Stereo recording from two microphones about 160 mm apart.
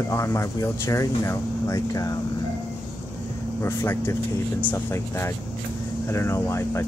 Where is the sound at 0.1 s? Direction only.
20° left (ahead or behind).